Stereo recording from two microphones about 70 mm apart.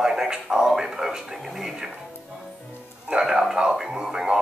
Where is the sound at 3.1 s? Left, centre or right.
Centre.